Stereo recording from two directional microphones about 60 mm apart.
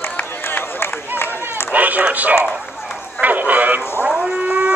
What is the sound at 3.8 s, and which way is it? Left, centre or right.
Dog, left.